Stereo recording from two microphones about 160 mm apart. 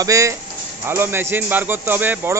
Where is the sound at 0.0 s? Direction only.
20° right (ahead or behind).